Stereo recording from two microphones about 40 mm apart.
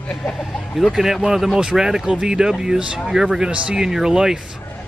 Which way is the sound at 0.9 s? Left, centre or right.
Centre.